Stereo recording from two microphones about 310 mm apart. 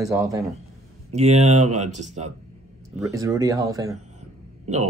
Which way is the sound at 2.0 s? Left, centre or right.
Right.